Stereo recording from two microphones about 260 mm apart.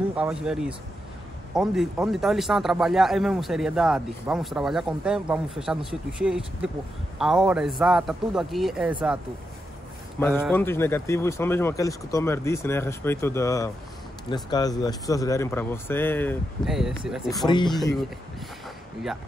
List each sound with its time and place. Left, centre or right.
0.1 s speech: centre
10.4 s speech: centre
17.3 s speech: centre